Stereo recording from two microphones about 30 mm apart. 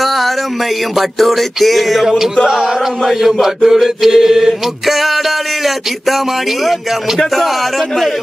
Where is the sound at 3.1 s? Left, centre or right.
Centre.